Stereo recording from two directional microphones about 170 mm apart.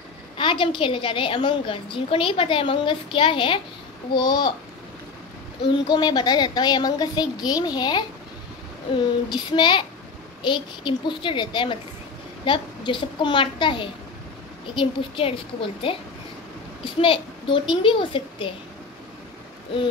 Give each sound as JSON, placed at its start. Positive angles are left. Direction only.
{"t": 0.4, "sound": "a woman's voice", "side_deg": 30}
{"t": 5.7, "sound": "a woman's voice", "side_deg": 25}